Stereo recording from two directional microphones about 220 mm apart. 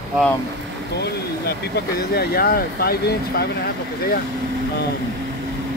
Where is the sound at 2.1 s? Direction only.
45° left (ahead or behind).